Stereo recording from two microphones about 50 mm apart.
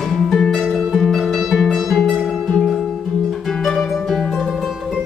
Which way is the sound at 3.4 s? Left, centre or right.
Centre.